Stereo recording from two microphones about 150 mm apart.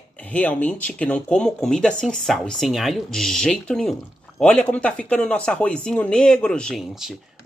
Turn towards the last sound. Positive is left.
turn(degrees=5)  # may be behind; listen again after turning